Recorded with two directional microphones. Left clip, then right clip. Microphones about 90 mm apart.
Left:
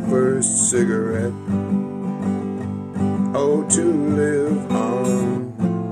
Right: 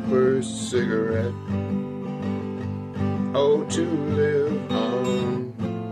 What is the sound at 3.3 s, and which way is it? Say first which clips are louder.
Music: left 1 dB; 40° left (ahead or behind).